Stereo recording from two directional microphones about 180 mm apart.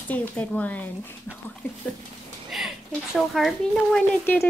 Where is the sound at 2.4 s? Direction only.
Centre (ahead or behind).